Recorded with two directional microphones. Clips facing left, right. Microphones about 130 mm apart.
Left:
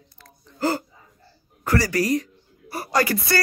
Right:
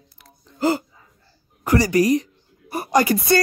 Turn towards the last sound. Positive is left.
turn(degrees=-20)  # may be behind; listen again after turning